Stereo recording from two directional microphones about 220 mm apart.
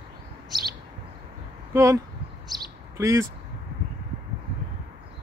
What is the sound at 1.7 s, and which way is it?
Speech, 15° right (ahead or behind).